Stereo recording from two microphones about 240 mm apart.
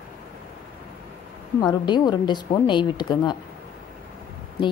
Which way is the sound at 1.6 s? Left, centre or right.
Centre.